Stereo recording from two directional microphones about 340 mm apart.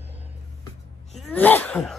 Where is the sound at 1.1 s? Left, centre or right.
Centre.